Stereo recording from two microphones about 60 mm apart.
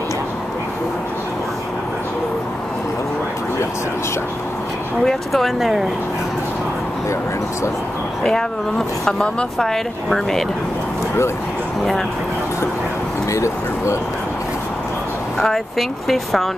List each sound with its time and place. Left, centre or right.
5.0 s speech: centre
8.2 s speech: centre
9.6 s speech: centre
13.3 s speech: left
15.4 s speech: centre